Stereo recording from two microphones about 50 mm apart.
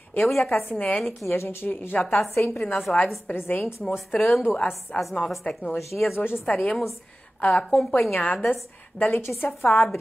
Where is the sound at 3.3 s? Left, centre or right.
Left.